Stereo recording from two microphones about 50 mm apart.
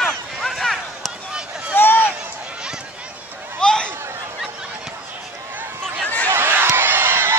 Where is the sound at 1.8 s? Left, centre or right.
Left.